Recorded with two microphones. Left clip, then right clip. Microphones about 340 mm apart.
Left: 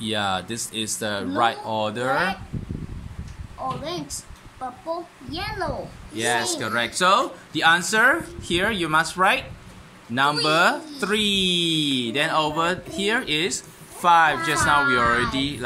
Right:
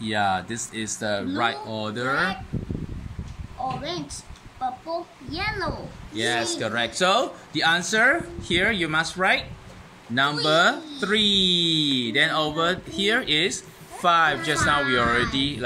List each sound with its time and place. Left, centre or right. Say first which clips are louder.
0.0 s speech: right 1 dB; centre
5.3 s speech: even; centre